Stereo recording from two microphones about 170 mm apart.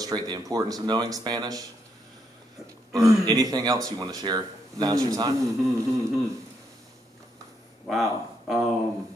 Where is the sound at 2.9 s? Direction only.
20° right (ahead or behind).